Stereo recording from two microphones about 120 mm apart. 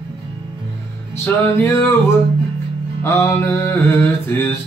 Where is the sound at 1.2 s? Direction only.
20° left (ahead or behind).